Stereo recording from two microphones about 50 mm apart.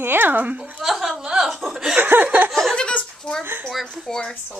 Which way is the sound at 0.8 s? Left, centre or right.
Centre.